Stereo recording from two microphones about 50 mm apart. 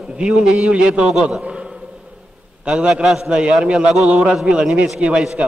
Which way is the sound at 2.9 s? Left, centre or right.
Centre.